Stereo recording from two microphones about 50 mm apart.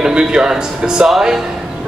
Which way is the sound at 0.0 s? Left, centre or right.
Centre.